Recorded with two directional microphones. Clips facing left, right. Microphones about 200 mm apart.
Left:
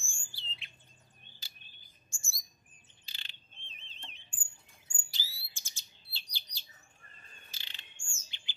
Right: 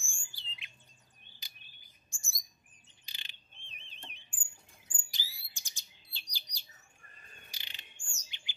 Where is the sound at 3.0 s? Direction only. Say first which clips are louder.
Even; 15° right (ahead or behind).